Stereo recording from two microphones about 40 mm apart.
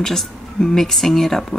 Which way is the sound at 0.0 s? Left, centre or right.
Centre.